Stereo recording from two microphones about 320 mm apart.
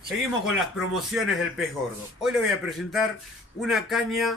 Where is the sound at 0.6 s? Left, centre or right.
Centre.